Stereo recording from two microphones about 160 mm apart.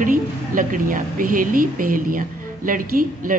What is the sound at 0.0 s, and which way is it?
A woman's voice, 55° right (ahead or behind).